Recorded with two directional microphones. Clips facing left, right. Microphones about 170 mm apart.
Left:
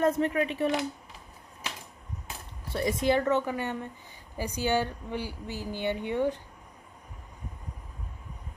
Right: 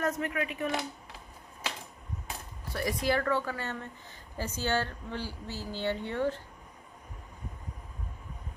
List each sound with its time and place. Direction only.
0.0 s a woman's voice: 30° left (ahead or behind)
2.7 s a woman's voice: 20° left (ahead or behind)